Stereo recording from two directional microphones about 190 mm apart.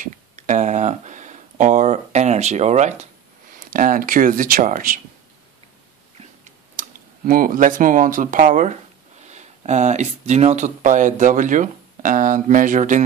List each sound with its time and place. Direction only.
0.0 s speech: 40° right (ahead or behind)
6.1 s chewing: 40° right (ahead or behind)
9.3 s speech: 40° right (ahead or behind)